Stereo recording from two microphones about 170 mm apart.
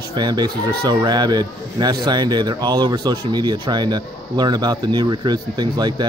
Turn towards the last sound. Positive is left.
turn(degrees=-25)  # may be behind; listen again after turning